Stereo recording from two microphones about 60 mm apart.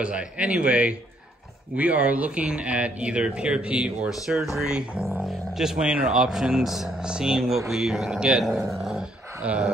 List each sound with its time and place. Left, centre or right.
0.0 s speech: centre
9.4 s dog: centre